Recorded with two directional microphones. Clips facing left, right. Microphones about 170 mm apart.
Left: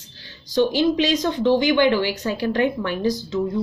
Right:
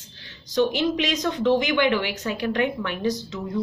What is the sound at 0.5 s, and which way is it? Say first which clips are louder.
Speech: left 3 dB; 30° left (ahead or behind).